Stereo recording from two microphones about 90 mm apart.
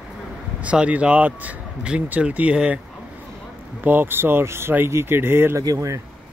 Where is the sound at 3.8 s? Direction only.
20° right (ahead or behind).